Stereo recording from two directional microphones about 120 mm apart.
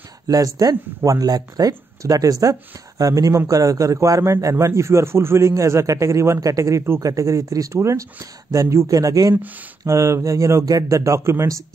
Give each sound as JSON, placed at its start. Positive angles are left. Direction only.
{"t": 0.3, "sound": "a man's voice", "side_deg": -30}
{"t": 9.3, "sound": "speech", "side_deg": -15}
{"t": 9.8, "sound": "a man's voice", "side_deg": -25}